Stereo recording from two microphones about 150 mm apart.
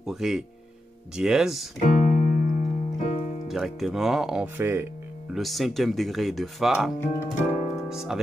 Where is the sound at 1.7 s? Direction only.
50° left (ahead or behind).